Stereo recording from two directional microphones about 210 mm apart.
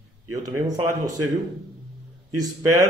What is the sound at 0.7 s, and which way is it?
Speech, 15° right (ahead or behind).